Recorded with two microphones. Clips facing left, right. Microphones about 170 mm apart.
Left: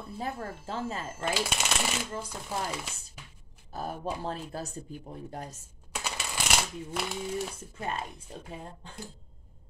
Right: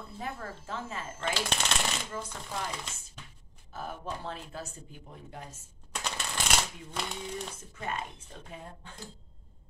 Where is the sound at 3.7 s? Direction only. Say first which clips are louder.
Left 4 dB; 35° left (ahead or behind).